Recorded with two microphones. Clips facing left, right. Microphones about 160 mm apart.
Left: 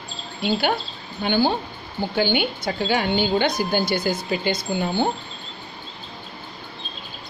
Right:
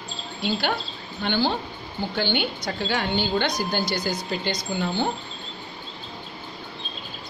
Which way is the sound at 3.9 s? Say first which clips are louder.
Left 4 dB; 55° left (ahead or behind).